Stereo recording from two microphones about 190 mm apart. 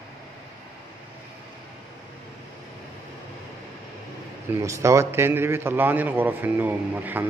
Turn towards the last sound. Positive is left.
turn(degrees=-10)  # may be behind; listen again after turning